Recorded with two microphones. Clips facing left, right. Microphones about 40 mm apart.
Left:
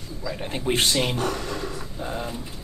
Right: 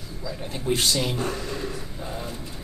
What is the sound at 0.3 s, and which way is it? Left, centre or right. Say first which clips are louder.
Speech: left 1 dB; left.